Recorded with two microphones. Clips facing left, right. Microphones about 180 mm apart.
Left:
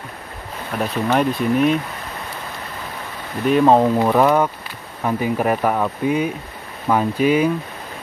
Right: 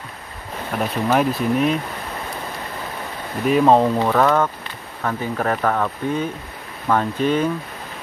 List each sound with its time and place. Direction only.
0.7 s speech: 5° right (ahead or behind)
3.4 s speech: centre (ahead or behind)